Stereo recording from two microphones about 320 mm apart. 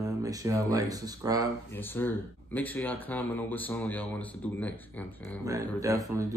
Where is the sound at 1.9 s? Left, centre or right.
Centre.